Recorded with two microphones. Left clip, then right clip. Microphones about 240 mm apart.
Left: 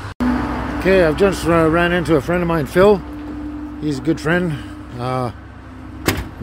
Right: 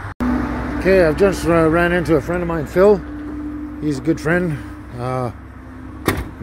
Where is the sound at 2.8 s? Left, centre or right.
Centre.